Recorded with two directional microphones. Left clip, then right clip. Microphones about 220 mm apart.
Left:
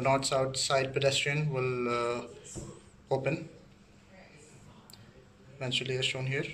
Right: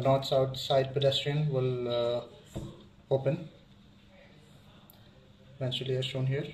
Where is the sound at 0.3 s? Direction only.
25° right (ahead or behind).